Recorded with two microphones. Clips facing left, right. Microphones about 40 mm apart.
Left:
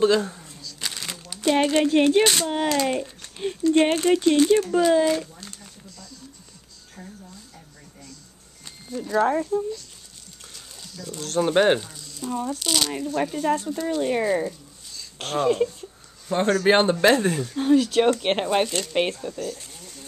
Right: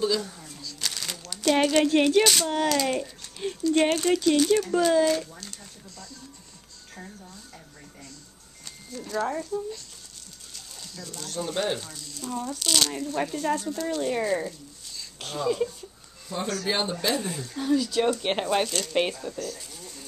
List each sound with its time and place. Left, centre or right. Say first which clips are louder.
0.0 s speech: left 7 dB; left
0.7 s a sound: left 1 dB; centre
2.0 s speech: left 2 dB; left
3.2 s a sound: left 3 dB; centre
3.9 s speech: left 3 dB; left
4.6 s speech: left 2 dB; centre
8.6 s a sound: left 6 dB; centre
9.2 s speech: left 7 dB; left
10.5 s a sound: even; centre
11.2 s speech: left 10 dB; left
12.0 s frying: left 4 dB; centre
12.5 s speech: left 1 dB; centre
15.1 s speech: left 5 dB; left
18.2 s speech: left 3 dB; left